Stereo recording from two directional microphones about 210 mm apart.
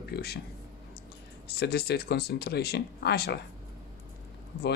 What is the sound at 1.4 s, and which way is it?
Speech, 50° left (ahead or behind).